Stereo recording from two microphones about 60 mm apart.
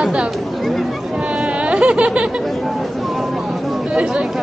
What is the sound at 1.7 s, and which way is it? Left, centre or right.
Snicker, right.